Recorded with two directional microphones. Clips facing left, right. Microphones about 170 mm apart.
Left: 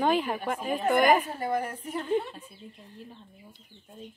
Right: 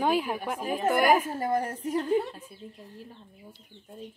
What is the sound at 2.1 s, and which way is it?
Speech, 5° right (ahead or behind).